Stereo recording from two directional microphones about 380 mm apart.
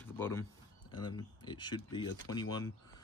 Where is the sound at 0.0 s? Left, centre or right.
Centre.